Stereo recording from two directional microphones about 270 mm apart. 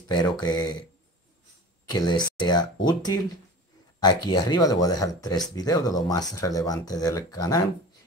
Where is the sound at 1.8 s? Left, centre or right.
Centre.